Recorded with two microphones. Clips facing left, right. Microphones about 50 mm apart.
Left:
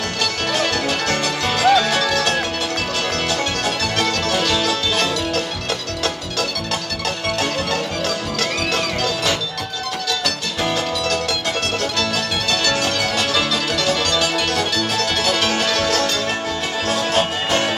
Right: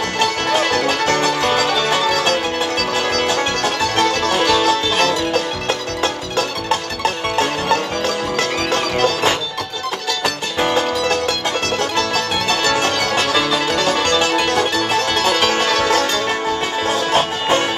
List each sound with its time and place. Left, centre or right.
0.2 s music: right
8.4 s music: right